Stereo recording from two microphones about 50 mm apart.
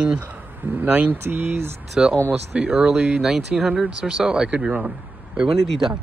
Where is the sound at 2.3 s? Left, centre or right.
Right.